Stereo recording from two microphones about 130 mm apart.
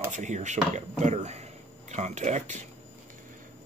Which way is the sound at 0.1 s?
65° right (ahead or behind).